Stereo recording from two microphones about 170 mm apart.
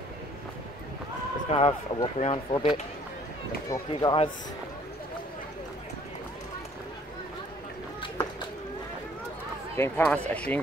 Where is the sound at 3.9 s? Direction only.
30° left (ahead or behind).